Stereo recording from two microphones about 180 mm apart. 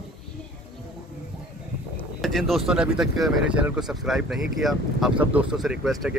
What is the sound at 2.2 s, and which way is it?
Speech, centre (ahead or behind).